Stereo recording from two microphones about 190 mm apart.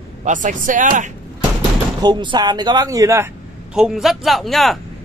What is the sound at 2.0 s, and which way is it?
Speech, 25° right (ahead or behind).